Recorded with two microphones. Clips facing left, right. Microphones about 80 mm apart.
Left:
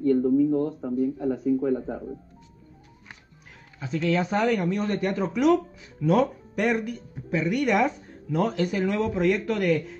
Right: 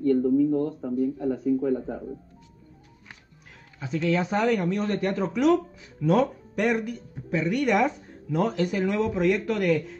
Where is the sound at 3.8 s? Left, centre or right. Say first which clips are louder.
Even; centre.